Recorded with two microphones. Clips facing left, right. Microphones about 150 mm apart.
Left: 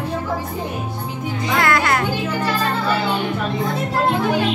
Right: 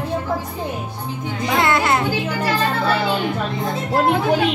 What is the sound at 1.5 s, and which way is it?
Music, 25° right (ahead or behind).